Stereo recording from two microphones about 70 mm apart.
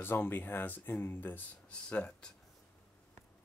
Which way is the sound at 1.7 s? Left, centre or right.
Centre.